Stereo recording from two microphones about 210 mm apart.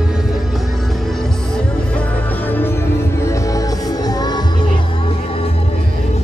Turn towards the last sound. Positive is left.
turn(degrees=20)  # may be behind; listen again after turning